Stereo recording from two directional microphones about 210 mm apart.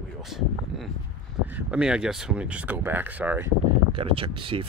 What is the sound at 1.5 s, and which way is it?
Speech, 5° right (ahead or behind).